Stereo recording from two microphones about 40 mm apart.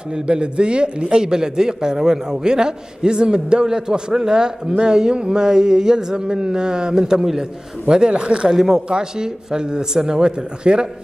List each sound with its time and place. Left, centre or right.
0.1 s a man's voice: right
8.5 s a man's voice: centre